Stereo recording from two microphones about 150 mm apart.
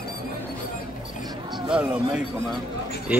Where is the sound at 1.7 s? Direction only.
5° right (ahead or behind).